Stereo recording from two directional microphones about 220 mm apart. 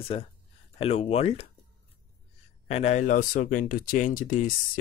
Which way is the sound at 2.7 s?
30° left (ahead or behind).